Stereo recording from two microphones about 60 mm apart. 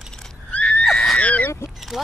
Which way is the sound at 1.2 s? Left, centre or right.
Left.